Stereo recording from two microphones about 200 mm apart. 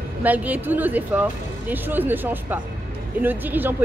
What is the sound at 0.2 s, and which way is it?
Speech, 10° right (ahead or behind).